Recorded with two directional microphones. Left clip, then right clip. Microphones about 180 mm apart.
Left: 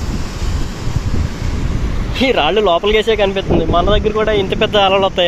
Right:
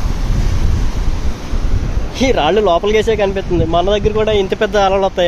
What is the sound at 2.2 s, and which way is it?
Speech, 10° right (ahead or behind).